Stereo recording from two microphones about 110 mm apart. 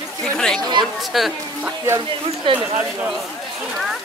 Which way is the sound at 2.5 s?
50° right (ahead or behind).